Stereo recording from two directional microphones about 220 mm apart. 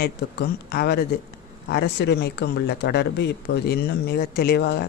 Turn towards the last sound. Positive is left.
turn(degrees=50)  # may be behind; listen again after turning